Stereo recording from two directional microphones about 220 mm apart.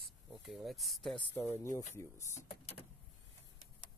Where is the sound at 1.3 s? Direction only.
10° left (ahead or behind).